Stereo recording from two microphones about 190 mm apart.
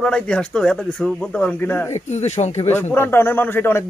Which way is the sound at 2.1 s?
35° left (ahead or behind).